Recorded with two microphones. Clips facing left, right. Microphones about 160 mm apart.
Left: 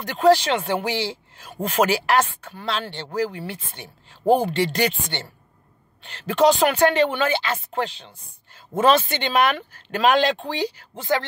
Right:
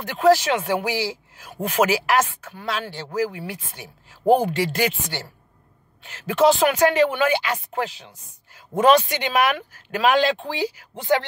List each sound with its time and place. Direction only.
0.0 s speech: 5° right (ahead or behind)
11.0 s speech: 20° right (ahead or behind)